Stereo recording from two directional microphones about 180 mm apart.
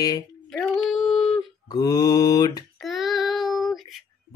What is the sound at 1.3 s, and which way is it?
Mantra, 20° left (ahead or behind).